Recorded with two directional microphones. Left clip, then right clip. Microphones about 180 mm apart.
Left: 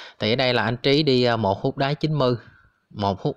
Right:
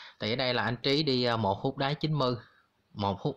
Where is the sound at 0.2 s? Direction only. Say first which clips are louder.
Left 9 dB; 40° left (ahead or behind).